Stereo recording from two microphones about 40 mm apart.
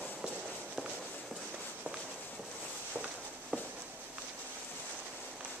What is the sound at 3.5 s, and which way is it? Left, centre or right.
Walk, right.